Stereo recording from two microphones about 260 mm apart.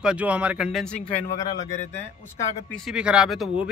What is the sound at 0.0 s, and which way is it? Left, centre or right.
Speech, centre.